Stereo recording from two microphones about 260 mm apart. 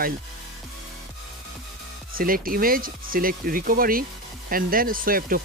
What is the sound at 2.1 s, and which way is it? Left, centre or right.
Speech, right.